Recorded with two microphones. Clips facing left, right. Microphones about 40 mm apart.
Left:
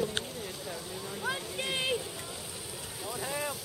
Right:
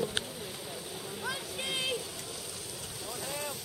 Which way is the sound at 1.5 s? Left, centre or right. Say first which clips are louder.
Even; centre.